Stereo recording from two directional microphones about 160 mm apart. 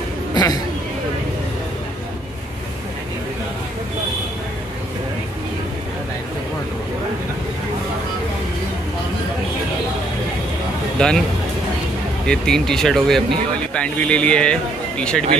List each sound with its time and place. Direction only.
0.3 s a sound: 25° left (ahead or behind)
11.0 s speech: 5° left (ahead or behind)
12.3 s speech: 5° left (ahead or behind)